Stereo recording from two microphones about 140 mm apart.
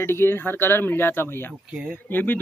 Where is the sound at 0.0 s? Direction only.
15° left (ahead or behind).